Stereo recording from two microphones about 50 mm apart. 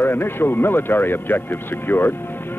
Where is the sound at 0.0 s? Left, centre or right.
Left.